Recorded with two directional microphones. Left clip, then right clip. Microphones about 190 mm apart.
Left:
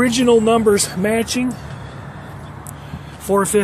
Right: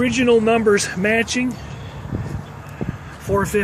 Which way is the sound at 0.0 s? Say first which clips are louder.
Left 2 dB; 20° left (ahead or behind).